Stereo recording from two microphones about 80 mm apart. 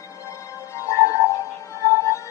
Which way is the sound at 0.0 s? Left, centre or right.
Left.